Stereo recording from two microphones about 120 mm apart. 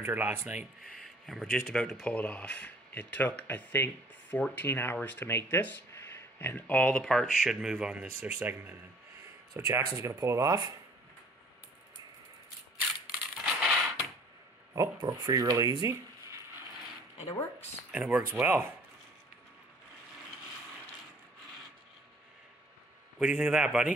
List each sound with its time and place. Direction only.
0.0 s speech: 20° right (ahead or behind)
1.0 s speech: centre (ahead or behind); by 10.7 s 30° right (ahead or behind)
13.3 s coin: 10° right (ahead or behind)
14.8 s speech: 30° right (ahead or behind)
17.9 s speech: 10° right (ahead or behind)
23.1 s speech: 10° right (ahead or behind)